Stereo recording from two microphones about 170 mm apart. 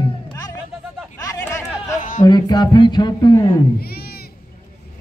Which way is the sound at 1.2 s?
15° left (ahead or behind).